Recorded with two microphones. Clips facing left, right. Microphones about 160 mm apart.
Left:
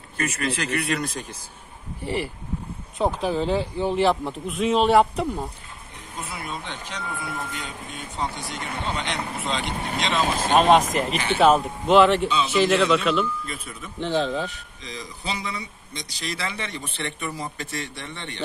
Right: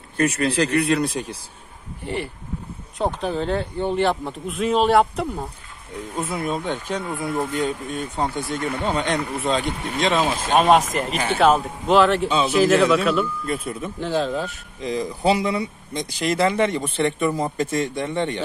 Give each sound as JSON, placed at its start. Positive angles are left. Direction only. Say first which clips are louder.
{"t": 0.2, "sound": "speech", "louder": "right 7 dB", "side_deg": -35}
{"t": 3.0, "sound": "speech", "louder": "even", "side_deg": 0}
{"t": 6.2, "sound": "speech", "louder": "right 9 dB", "side_deg": -50}
{"t": 10.6, "sound": "speech", "louder": "right 1 dB", "side_deg": 0}
{"t": 14.8, "sound": "speech", "louder": "right 13 dB", "side_deg": -50}